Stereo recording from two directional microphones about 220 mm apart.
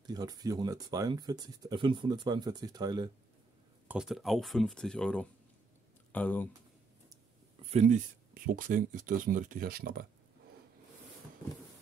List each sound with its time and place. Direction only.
0.0 s speech: 15° right (ahead or behind)
3.8 s speech: 5° right (ahead or behind)
7.7 s speech: 35° right (ahead or behind)